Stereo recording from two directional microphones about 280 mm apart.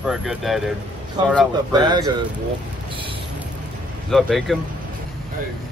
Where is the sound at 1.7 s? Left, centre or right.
Centre.